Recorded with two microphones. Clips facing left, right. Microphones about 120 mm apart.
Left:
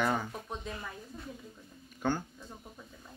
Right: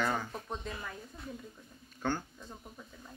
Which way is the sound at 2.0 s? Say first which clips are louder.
Left 2 dB; 15° left (ahead or behind).